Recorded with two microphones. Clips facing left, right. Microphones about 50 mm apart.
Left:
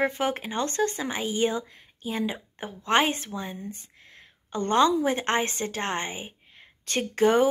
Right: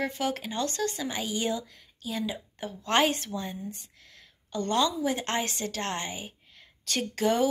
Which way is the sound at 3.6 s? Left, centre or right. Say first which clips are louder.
Left 1 dB; left.